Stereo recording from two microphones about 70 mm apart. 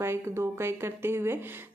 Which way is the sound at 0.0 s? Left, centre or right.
Right.